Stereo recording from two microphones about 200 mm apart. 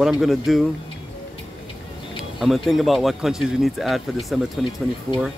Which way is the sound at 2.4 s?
Centre (ahead or behind).